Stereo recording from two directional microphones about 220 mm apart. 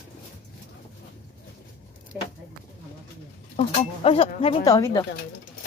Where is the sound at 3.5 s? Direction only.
25° left (ahead or behind).